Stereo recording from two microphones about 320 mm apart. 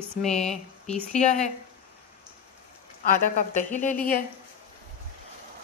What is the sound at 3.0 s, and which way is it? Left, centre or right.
Speech, left.